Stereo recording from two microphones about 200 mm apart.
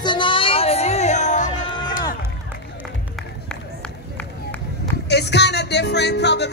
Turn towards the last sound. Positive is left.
turn(degrees=60)  # may be behind; listen again after turning